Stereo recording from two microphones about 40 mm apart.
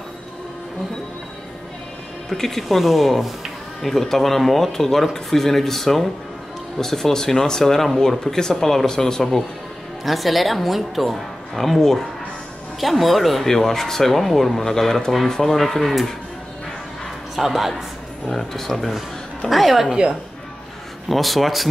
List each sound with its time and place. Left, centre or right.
2.2 s speech: centre
10.0 s speech: centre
17.4 s speech: centre
19.9 s speech: right
21.1 s speech: centre